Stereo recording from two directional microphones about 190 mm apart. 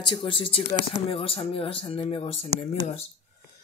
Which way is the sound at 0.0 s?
25° left (ahead or behind).